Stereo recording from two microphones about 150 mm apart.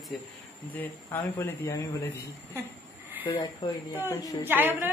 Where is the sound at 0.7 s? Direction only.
15° left (ahead or behind).